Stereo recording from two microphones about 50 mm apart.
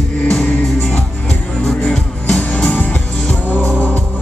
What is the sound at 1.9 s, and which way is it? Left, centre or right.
Music, centre.